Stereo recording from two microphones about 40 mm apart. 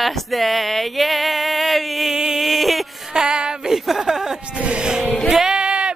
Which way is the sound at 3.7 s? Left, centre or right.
Centre.